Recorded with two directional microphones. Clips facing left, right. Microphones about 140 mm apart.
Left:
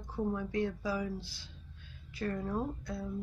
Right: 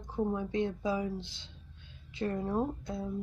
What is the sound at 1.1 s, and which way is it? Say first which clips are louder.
A woman's voice: right 2 dB; 20° right (ahead or behind).